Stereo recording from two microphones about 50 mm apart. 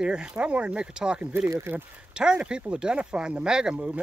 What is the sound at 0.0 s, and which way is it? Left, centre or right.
Speech, centre.